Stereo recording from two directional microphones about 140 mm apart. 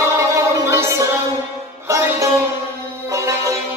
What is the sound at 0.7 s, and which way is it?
Music, 20° right (ahead or behind).